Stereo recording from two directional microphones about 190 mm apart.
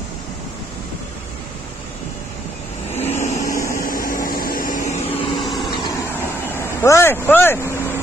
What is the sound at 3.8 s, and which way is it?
Vacuum cleaner, 50° left (ahead or behind).